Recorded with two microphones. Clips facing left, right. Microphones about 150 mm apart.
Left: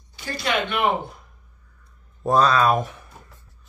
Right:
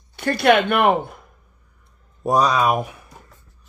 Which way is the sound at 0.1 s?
60° right (ahead or behind).